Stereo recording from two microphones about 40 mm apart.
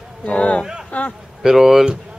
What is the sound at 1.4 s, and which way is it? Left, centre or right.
Speech, centre.